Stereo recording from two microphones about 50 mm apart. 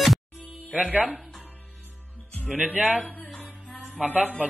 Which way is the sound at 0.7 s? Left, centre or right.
Centre.